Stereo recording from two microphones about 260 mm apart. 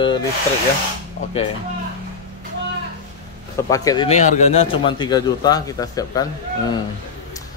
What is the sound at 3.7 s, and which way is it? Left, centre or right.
A man's voice, centre.